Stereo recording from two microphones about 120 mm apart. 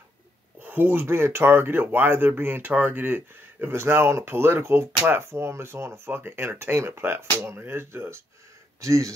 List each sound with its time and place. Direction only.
0.6 s speech: 15° right (ahead or behind)